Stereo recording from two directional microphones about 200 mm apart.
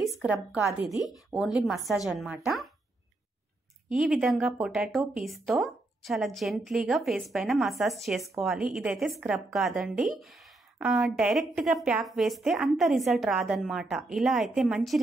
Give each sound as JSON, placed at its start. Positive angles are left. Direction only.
{"t": 0.2, "sound": "a woman's voice", "side_deg": -5}
{"t": 3.9, "sound": "a woman's voice", "side_deg": 0}